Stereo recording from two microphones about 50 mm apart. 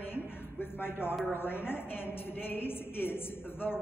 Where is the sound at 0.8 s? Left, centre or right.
Left.